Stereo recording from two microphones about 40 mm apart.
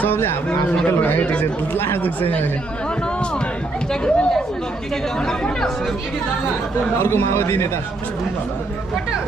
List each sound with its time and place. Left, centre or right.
0.8 s speech: left
1.4 s speech: left
3.9 s speech: left
7.0 s a man's voice: left